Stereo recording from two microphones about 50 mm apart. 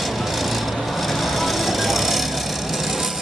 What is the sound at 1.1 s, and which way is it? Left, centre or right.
Vehicle, centre.